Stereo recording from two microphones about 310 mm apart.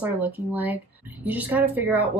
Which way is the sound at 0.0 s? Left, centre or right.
Centre.